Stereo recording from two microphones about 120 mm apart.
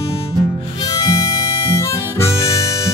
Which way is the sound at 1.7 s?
25° left (ahead or behind).